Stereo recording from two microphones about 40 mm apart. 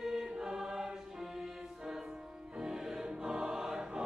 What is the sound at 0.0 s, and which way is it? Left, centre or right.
Choir, centre.